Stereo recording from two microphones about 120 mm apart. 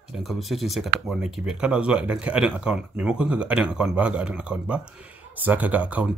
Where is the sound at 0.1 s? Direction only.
Centre (ahead or behind).